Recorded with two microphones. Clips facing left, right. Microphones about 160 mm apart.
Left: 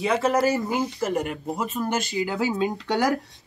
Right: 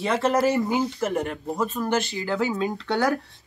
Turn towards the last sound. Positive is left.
turn(degrees=20)  # may be behind; listen again after turning